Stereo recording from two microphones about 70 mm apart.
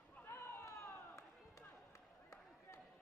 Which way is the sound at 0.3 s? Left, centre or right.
Left.